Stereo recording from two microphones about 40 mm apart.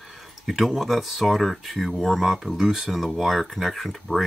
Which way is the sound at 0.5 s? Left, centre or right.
Centre.